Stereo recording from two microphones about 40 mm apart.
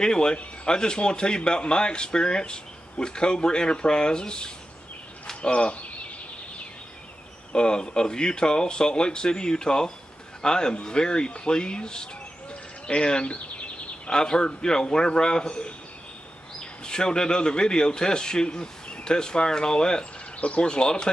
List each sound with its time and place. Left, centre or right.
0.0 s speech: centre
7.5 s speech: left
12.8 s a sound: left
14.2 s speech: left
16.8 s speech: centre
20.3 s speech: left
20.6 s speech: left